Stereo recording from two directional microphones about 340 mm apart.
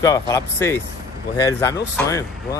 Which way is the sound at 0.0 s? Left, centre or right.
Centre.